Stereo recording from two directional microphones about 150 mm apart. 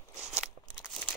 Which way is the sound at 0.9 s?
10° left (ahead or behind).